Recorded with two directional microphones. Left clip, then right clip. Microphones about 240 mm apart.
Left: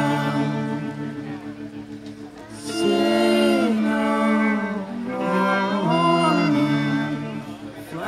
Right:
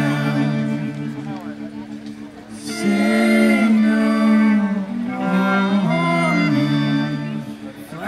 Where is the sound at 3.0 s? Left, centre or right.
Left.